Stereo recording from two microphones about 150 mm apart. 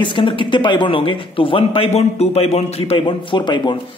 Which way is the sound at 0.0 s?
35° left (ahead or behind).